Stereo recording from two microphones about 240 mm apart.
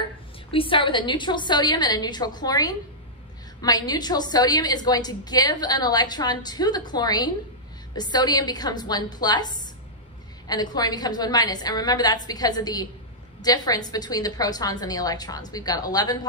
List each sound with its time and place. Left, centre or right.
0.5 s a woman's voice: left
10.5 s a woman's voice: centre